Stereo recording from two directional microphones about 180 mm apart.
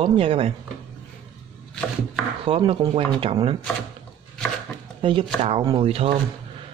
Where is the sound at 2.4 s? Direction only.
30° right (ahead or behind).